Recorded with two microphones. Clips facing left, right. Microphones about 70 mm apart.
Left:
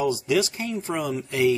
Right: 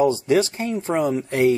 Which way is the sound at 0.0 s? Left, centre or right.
Right.